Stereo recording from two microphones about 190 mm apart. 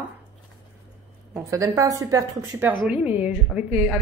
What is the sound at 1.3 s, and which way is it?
Speech, 15° right (ahead or behind).